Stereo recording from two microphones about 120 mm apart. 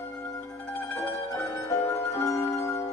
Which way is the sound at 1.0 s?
20° left (ahead or behind).